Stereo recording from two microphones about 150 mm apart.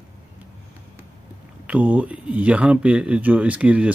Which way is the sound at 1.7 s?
10° right (ahead or behind).